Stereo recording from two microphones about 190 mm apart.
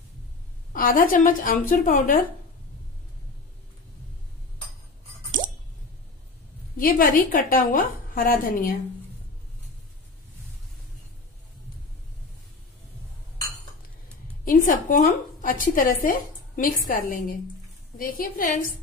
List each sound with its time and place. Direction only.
0.7 s a woman's voice: 45° left (ahead or behind)
5.4 s a sound: 40° right (ahead or behind)
6.8 s a woman's voice: 50° left (ahead or behind)
14.4 s a woman's voice: 45° left (ahead or behind)